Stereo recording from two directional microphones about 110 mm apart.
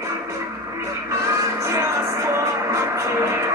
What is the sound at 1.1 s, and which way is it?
Music, 30° right (ahead or behind).